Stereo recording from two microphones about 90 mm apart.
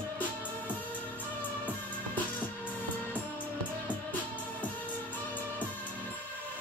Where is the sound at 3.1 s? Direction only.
20° left (ahead or behind).